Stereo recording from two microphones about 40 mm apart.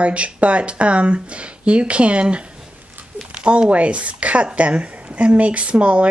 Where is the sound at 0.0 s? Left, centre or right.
Right.